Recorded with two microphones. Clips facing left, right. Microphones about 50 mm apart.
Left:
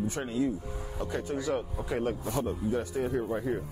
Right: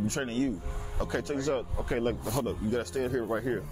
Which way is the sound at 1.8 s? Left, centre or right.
Right.